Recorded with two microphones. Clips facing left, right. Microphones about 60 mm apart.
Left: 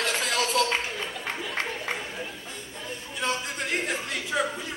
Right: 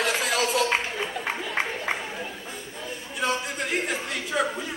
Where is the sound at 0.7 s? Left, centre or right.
Right.